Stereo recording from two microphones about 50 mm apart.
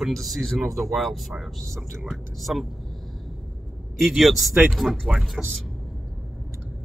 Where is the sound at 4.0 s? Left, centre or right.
Centre.